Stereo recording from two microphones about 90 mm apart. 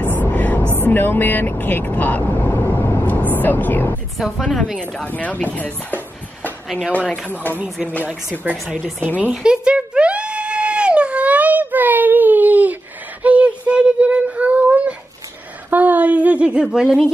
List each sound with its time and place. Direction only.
0.0 s a sound: 15° left (ahead or behind)
0.7 s speech: 20° left (ahead or behind)
4.2 s speech: centre (ahead or behind)
5.0 s speech: 15° left (ahead or behind)
8.5 s a woman's voice: 15° right (ahead or behind)
9.3 s dog: 10° right (ahead or behind)
13.2 s child singing: 15° right (ahead or behind)
15.7 s a sound: 20° right (ahead or behind)
16.6 s a woman's voice: 5° right (ahead or behind)